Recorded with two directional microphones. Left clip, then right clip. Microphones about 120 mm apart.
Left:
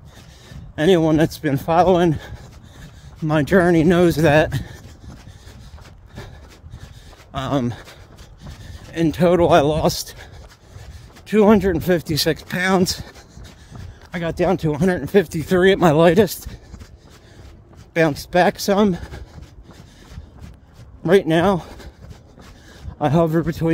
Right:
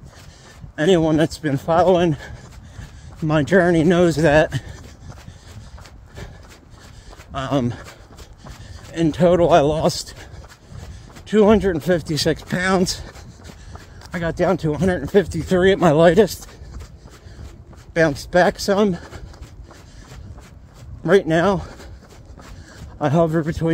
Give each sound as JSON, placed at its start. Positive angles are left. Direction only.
{"t": 0.5, "sound": "speech", "side_deg": 40}
{"t": 7.3, "sound": "speech", "side_deg": 40}
{"t": 8.9, "sound": "speech", "side_deg": 35}
{"t": 11.2, "sound": "speech", "side_deg": 35}
{"t": 14.1, "sound": "speech", "side_deg": 35}
{"t": 17.9, "sound": "speech", "side_deg": 35}
{"t": 21.0, "sound": "speech", "side_deg": 35}
{"t": 22.9, "sound": "speech", "side_deg": 35}